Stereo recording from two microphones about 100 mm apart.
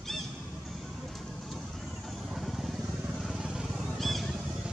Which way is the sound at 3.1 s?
5° right (ahead or behind).